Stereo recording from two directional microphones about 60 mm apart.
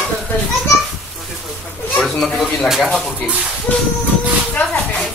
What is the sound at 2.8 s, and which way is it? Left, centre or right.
Speech, centre.